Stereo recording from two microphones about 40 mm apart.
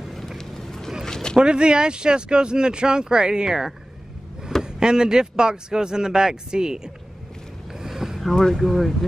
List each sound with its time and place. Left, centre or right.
0.1 s vehicle: centre
0.4 s vehicle: centre
1.0 s a sound: centre
1.4 s speech: right
7.8 s boat: centre
8.5 s speech: centre